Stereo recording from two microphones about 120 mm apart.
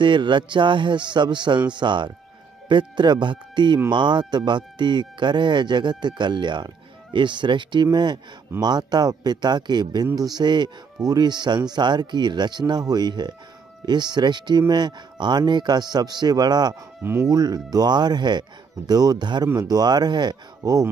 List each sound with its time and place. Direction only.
0.0 s speech: 40° right (ahead or behind)